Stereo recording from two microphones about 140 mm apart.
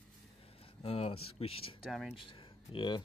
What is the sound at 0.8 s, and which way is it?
Speech, 45° left (ahead or behind).